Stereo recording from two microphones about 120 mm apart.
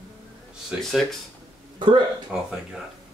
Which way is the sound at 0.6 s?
Centre (ahead or behind).